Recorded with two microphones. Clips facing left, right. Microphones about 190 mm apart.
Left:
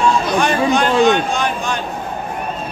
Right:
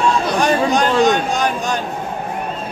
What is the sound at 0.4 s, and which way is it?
Speech, 40° right (ahead or behind).